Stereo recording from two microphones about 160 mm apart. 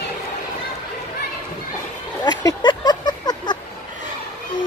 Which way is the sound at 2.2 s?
25° left (ahead or behind).